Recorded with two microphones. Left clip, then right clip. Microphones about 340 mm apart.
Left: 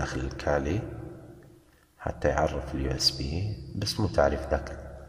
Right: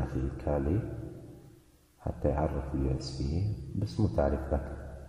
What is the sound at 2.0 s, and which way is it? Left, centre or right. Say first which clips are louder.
Speech: left 5 dB; left.